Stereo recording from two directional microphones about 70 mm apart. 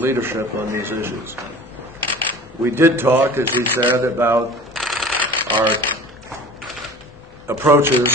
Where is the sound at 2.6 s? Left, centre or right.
Right.